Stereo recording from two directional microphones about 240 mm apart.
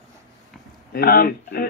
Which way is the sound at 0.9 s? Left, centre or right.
Left.